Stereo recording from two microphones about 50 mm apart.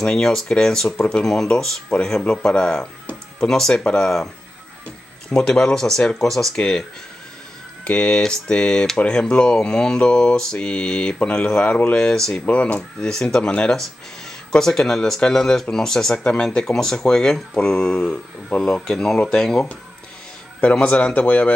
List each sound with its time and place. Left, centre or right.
0.0 s speech: centre
5.3 s speech: centre
6.5 s speech: centre
7.8 s speech: left
9.3 s mantra: centre
12.0 s speech: centre
12.4 s speech: left
13.0 s speech: centre
20.8 s mantra: left